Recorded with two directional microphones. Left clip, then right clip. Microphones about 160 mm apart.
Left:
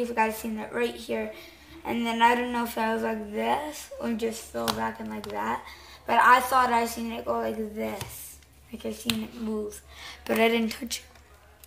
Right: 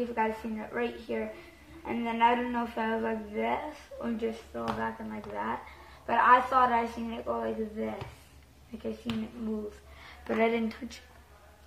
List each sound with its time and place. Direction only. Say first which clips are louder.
0.1 s a woman's voice: left 4 dB; 40° left (ahead or behind)
9.1 s speech: left 9 dB; 15° left (ahead or behind)
10.0 s a woman's voice: left 4 dB; 40° left (ahead or behind)